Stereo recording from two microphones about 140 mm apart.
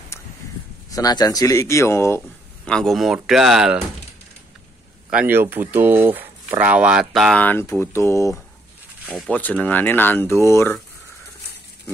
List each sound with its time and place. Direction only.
0.9 s speech: 25° left (ahead or behind)
2.6 s speech: 5° left (ahead or behind)
5.1 s speech: 15° right (ahead or behind)
7.3 s speech: 10° left (ahead or behind)
9.0 s speech: 5° right (ahead or behind)
9.3 s speech: 10° left (ahead or behind)